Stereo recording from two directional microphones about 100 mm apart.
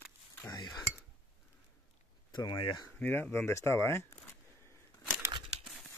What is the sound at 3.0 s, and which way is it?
Speech, 20° left (ahead or behind).